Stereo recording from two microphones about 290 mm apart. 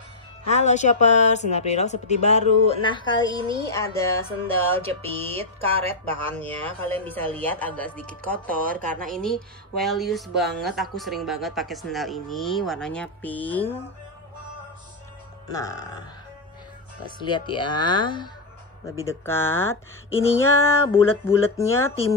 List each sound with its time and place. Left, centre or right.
0.5 s speech: left
3.7 s music: centre
5.0 s music: centre
6.3 s speech: centre
8.5 s music: right
9.1 s speech: centre
15.4 s music: centre
17.0 s music: centre